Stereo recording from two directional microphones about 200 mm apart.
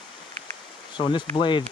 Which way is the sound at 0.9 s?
25° left (ahead or behind).